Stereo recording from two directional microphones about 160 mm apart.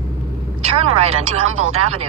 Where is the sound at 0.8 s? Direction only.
40° right (ahead or behind).